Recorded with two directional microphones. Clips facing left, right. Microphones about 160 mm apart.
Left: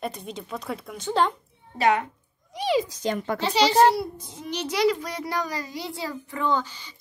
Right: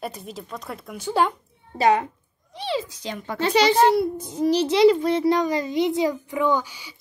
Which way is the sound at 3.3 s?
55° right (ahead or behind).